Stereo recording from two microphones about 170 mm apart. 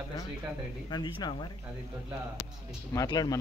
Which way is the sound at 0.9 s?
25° left (ahead or behind).